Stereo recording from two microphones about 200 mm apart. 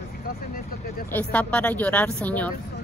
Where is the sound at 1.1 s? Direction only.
5° left (ahead or behind).